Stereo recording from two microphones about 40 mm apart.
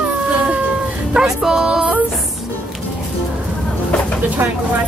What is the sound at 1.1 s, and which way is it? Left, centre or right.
Speech, centre.